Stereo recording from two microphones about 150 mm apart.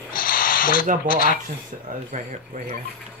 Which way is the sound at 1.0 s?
70° left (ahead or behind).